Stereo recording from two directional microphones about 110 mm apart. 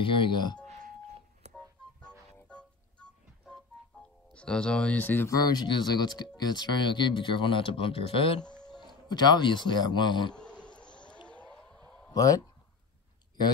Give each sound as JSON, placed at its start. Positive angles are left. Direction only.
{"t": 0.0, "sound": "speech", "side_deg": 50}
{"t": 2.0, "sound": "music", "side_deg": 10}
{"t": 4.0, "sound": "speech", "side_deg": 10}
{"t": 5.3, "sound": "speech", "side_deg": 35}
{"t": 8.4, "sound": "music", "side_deg": 10}
{"t": 8.7, "sound": "speech", "side_deg": 40}
{"t": 10.3, "sound": "insect", "side_deg": 10}
{"t": 10.8, "sound": "a sound", "side_deg": 10}
{"t": 12.1, "sound": "speech", "side_deg": 35}